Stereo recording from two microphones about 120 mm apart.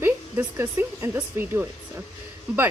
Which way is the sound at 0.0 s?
20° right (ahead or behind).